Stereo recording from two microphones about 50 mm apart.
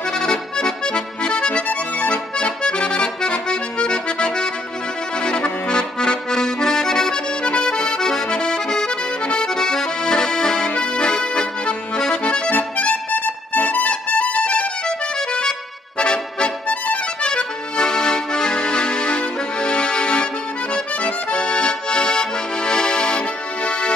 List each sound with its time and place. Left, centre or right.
0.1 s accordion: centre
12.5 s music: left
14.9 s accordion: centre
16.0 s music: centre
17.2 s accordion: centre